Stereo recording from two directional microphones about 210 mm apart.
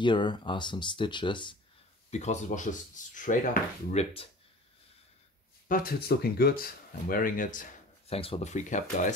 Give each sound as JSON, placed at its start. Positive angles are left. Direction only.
{"t": 0.0, "sound": "speech", "side_deg": 20}
{"t": 2.0, "sound": "speech", "side_deg": 35}
{"t": 3.9, "sound": "speech", "side_deg": 30}
{"t": 5.7, "sound": "speech", "side_deg": 45}
{"t": 8.1, "sound": "speech", "side_deg": 30}